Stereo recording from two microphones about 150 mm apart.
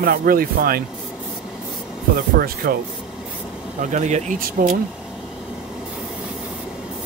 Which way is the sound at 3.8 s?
55° right (ahead or behind).